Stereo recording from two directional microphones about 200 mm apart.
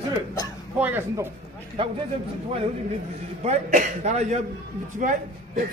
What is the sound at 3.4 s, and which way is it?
A man's voice, 35° right (ahead or behind).